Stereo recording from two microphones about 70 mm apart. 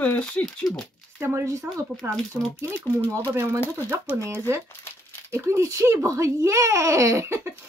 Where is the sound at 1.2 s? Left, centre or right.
Right.